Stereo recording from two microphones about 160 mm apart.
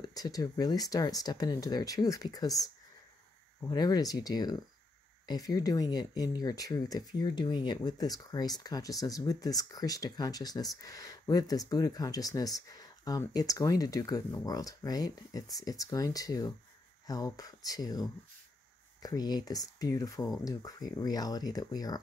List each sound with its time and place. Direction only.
0.0 s speech: 25° left (ahead or behind)